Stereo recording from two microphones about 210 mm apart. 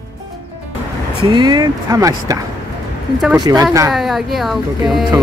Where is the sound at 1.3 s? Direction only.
20° right (ahead or behind).